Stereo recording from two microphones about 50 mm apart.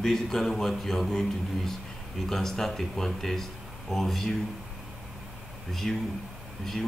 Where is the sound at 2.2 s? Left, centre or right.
Centre.